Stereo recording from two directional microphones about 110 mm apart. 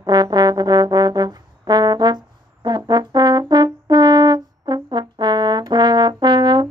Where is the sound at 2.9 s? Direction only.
40° right (ahead or behind).